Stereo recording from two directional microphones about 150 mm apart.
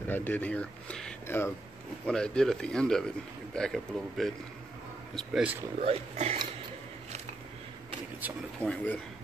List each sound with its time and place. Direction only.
0.1 s speech: 10° left (ahead or behind)
2.0 s speech: 5° left (ahead or behind)
5.8 s speech: 40° right (ahead or behind)
8.6 s speech: 10° left (ahead or behind)